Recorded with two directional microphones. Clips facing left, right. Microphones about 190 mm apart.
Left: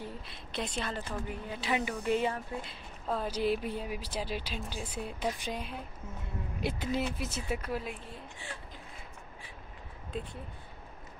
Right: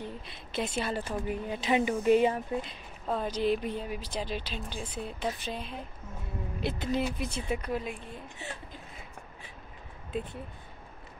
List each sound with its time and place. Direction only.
0.0 s a woman's voice: centre (ahead or behind); by 2.8 s 20° right (ahead or behind)
3.1 s speech: 5° left (ahead or behind)